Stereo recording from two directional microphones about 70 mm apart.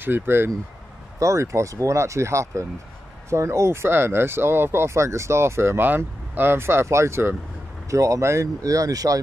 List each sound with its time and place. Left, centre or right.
0.0 s speech: right
1.2 s speech: right
7.9 s speech: right